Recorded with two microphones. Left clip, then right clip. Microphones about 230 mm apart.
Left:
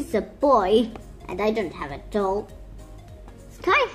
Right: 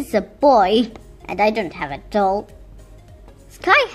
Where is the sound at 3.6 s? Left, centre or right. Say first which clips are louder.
Right 6 dB; right.